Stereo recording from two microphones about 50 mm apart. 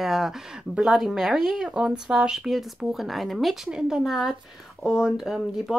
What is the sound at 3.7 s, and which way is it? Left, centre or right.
Speech, centre.